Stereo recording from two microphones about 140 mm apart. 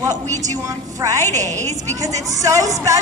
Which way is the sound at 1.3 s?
55° right (ahead or behind).